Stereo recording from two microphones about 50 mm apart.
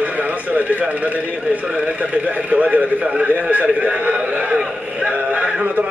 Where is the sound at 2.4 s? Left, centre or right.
Right.